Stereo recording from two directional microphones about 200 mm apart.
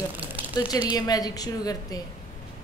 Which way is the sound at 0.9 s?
20° left (ahead or behind).